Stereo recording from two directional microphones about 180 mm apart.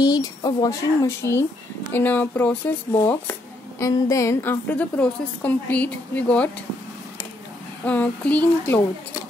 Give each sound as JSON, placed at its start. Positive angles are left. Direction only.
{"t": 0.0, "sound": "a woman's voice", "side_deg": 20}
{"t": 3.8, "sound": "a woman's voice", "side_deg": 15}
{"t": 7.8, "sound": "a woman's voice", "side_deg": 10}